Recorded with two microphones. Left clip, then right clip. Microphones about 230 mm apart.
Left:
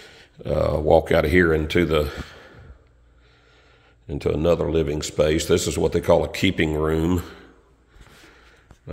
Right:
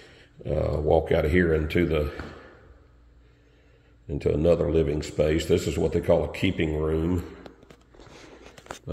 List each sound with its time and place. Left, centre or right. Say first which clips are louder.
0.1 s speech: left 5 dB; left
4.1 s speech: left 2 dB; centre